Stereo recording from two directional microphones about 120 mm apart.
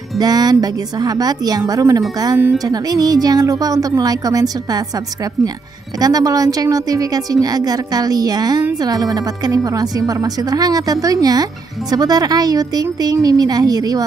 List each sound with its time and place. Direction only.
0.2 s speech: 35° right (ahead or behind)